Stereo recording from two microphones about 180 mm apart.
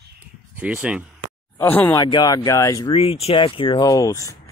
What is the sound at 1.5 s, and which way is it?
Speech, 10° left (ahead or behind).